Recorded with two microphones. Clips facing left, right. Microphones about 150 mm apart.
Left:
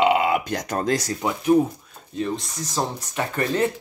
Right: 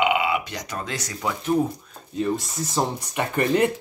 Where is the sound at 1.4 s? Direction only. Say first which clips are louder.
Left 4 dB; 10° left (ahead or behind).